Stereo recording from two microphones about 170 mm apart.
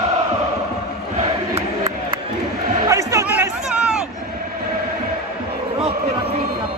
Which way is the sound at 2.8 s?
15° right (ahead or behind).